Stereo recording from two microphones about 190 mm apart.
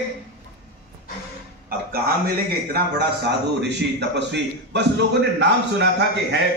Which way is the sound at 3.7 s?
65° right (ahead or behind).